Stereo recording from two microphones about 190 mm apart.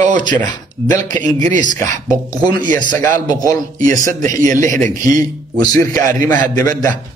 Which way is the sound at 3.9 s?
45° right (ahead or behind).